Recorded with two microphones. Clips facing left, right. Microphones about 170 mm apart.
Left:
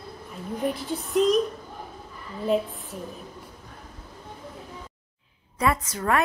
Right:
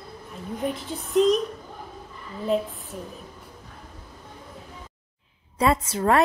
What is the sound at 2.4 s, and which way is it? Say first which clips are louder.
Music: even; centre (ahead or behind).